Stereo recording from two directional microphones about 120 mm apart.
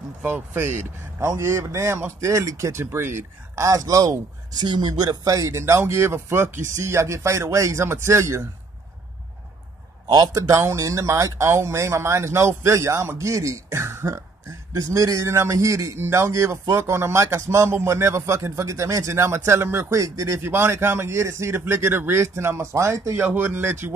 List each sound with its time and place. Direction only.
0.2 s a man's voice: 20° right (ahead or behind)
10.0 s a man's voice: 30° right (ahead or behind)